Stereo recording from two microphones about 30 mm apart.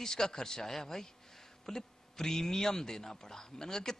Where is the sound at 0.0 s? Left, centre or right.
Centre.